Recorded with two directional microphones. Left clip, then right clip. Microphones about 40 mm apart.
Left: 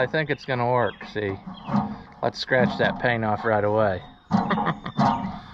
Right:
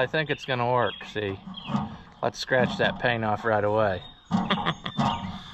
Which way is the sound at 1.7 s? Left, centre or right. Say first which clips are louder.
Left 6 dB; right.